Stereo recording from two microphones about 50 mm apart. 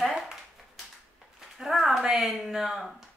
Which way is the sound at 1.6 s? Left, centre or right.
Centre.